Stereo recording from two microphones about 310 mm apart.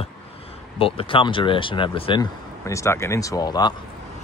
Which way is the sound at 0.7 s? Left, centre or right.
Centre.